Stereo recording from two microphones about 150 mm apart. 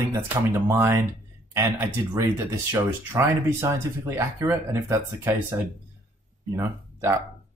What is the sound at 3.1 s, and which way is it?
Speech, 15° right (ahead or behind).